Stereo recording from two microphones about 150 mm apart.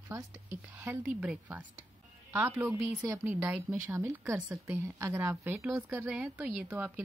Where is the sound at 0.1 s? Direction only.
15° right (ahead or behind).